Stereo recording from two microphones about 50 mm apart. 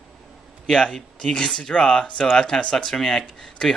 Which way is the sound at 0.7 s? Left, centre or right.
Centre.